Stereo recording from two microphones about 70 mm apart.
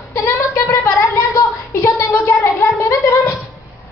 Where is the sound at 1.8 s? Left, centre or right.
Left.